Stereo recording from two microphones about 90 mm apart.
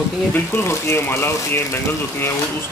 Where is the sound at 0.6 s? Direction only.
30° left (ahead or behind).